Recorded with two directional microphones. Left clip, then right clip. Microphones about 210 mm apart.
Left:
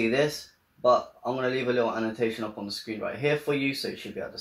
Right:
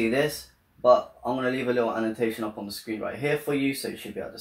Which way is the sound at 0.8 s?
5° left (ahead or behind).